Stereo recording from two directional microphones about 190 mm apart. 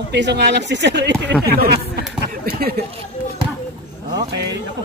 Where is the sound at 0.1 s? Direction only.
65° right (ahead or behind).